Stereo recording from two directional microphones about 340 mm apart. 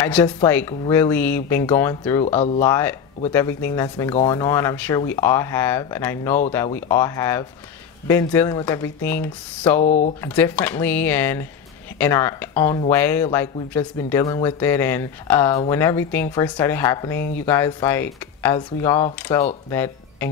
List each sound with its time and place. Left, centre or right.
0.1 s speech: centre
9.8 s speech: left
10.2 s speech: centre